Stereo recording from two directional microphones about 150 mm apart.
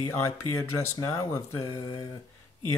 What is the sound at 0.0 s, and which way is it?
Speech, 20° left (ahead or behind).